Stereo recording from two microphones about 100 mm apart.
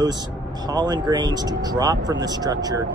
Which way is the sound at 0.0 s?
45° right (ahead or behind).